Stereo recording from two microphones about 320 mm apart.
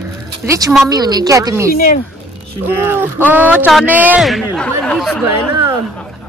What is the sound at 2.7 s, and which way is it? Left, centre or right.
Speech, centre.